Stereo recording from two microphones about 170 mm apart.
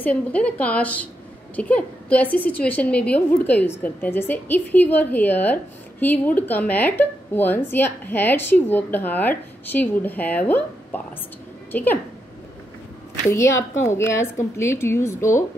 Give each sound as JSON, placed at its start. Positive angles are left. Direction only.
{"t": 0.0, "sound": "a woman's voice", "side_deg": 10}
{"t": 13.3, "sound": "a woman's voice", "side_deg": 15}